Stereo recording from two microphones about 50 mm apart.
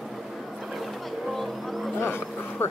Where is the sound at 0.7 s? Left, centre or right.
Centre.